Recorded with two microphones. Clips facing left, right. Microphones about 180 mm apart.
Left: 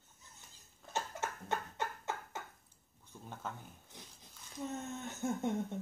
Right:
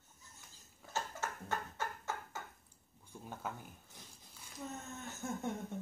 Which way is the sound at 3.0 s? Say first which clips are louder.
Right 1 dB; 10° right (ahead or behind).